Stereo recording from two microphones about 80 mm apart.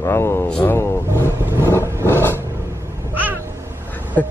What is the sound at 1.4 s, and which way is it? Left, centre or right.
Vehicle, right.